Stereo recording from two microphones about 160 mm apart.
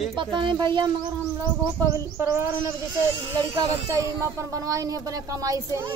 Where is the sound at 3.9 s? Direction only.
20° right (ahead or behind).